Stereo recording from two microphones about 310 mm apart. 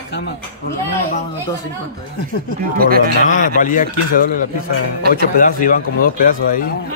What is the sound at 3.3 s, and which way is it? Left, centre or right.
Speech, left.